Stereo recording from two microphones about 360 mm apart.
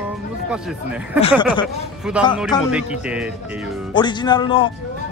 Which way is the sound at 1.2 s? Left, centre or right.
Centre.